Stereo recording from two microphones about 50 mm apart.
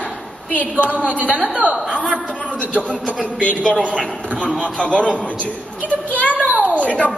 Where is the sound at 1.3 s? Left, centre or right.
Right.